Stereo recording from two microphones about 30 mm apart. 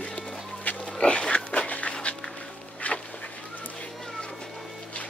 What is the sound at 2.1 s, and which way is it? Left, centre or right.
Music, left.